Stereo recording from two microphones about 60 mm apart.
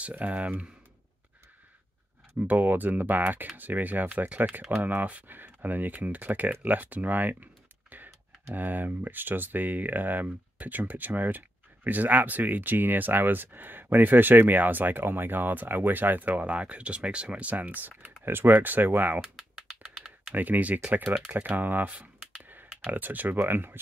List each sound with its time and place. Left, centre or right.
0.1 s speech: right
2.3 s speech: right
8.5 s speech: right
19.2 s typing: centre
20.3 s speech: right